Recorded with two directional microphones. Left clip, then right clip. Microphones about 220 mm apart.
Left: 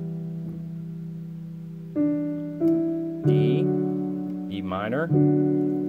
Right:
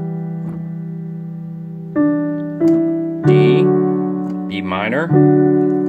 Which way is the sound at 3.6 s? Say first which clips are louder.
Right 11 dB; 40° right (ahead or behind).